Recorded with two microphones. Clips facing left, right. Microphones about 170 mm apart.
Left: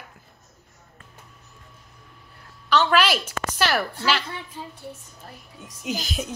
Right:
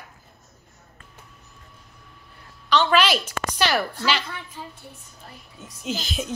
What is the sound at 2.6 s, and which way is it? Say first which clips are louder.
A woman's voice: even; 5° left (ahead or behind).